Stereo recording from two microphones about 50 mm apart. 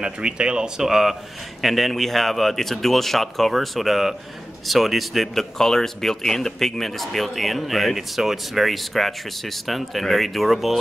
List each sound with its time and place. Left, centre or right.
0.0 s speech: centre